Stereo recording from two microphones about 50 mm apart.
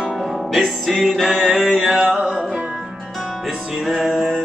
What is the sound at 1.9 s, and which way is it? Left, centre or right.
Music, right.